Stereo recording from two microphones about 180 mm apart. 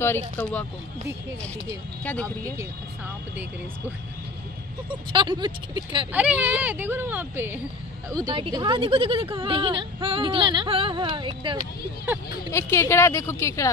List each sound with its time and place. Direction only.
0.0 s a woman's voice: 10° left (ahead or behind)
5.1 s speech: 25° right (ahead or behind)
6.1 s speech: 10° right (ahead or behind); by 11.5 s 25° right (ahead or behind)
12.4 s a woman's voice: 15° left (ahead or behind)